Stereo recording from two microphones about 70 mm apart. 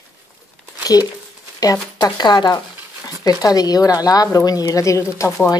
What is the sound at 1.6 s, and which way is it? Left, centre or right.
Speech, left.